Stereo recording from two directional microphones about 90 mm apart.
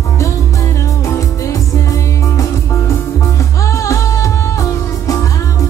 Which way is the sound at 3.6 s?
35° left (ahead or behind).